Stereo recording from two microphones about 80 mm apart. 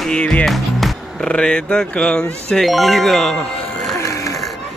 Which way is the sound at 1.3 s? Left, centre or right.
Centre.